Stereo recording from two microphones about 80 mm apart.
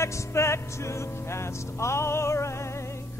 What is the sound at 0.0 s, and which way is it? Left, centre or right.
Speech, left.